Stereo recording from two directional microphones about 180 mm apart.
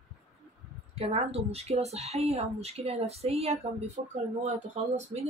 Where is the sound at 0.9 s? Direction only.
35° right (ahead or behind).